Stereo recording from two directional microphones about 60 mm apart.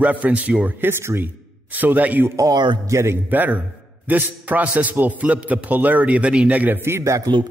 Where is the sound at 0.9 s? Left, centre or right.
Right.